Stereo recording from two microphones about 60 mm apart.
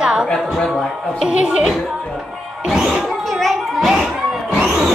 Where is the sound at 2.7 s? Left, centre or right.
Centre.